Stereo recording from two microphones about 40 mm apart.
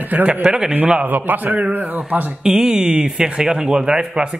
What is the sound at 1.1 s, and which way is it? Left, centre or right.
Speech, right.